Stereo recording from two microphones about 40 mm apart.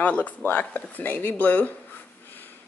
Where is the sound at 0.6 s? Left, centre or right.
Left.